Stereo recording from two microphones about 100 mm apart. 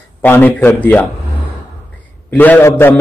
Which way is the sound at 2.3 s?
15° left (ahead or behind).